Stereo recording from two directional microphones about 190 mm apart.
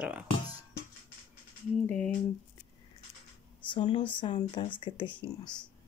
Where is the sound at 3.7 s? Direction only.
25° left (ahead or behind).